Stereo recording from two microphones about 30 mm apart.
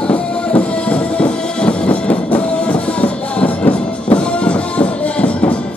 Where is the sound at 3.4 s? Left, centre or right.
Left.